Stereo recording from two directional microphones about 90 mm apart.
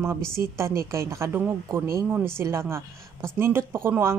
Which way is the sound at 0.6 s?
30° right (ahead or behind).